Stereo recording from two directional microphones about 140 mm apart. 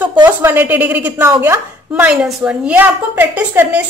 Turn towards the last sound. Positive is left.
turn(degrees=-10)  # may be behind; listen again after turning